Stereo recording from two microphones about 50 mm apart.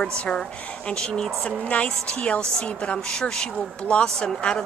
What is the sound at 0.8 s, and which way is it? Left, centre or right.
A woman's voice, centre.